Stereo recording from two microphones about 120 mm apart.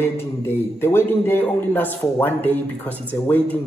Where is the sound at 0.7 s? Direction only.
20° left (ahead or behind).